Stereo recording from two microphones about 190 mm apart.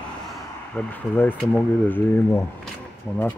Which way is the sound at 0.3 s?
10° left (ahead or behind).